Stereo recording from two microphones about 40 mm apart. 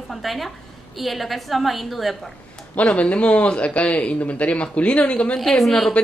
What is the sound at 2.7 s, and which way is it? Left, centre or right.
Speech, left.